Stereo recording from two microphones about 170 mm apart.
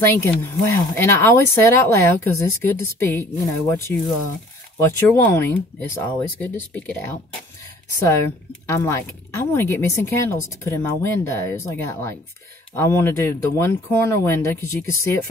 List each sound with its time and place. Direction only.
0.0 s speech: 15° left (ahead or behind)
8.6 s speech: 15° left (ahead or behind)